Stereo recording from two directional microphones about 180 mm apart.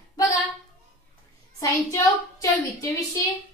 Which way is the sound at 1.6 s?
15° left (ahead or behind).